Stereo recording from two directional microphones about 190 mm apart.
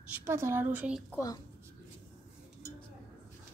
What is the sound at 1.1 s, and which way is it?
Speech, 20° left (ahead or behind).